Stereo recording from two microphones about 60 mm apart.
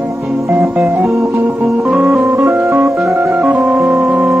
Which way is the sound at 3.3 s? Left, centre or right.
Right.